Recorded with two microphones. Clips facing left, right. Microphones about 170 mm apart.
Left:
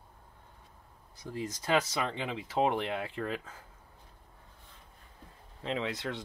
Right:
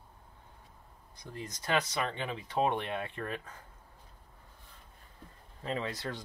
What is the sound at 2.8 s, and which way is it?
Speech, 90° left.